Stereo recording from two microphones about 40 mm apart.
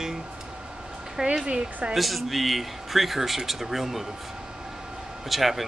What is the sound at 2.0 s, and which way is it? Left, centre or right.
Speech, centre.